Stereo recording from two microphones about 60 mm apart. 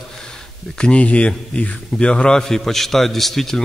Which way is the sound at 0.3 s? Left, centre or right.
Centre.